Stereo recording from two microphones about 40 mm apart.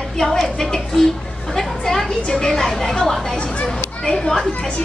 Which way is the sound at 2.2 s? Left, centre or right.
Left.